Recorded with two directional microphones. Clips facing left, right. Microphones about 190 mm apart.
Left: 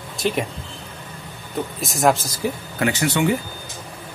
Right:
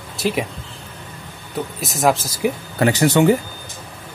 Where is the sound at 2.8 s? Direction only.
40° right (ahead or behind).